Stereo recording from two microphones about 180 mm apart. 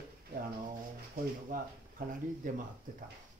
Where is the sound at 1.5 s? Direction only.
50° right (ahead or behind).